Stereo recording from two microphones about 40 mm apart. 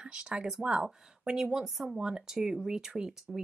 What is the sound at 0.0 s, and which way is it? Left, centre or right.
Speech, right.